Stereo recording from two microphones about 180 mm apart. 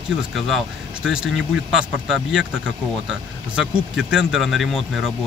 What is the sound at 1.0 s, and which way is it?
Speech, 5° right (ahead or behind).